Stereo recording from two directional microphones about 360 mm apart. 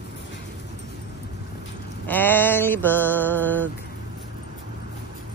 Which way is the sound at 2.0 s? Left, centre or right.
Centre.